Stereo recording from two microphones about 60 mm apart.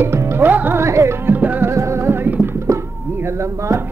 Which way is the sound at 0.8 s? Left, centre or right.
Right.